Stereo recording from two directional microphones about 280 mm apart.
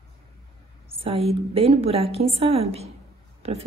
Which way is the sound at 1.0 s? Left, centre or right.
Right.